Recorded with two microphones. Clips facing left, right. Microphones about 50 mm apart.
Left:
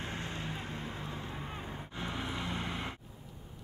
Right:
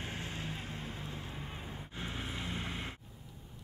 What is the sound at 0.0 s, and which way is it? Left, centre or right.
Vehicle, centre.